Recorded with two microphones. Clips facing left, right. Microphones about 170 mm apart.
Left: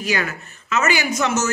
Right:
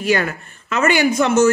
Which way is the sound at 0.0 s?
55° right (ahead or behind).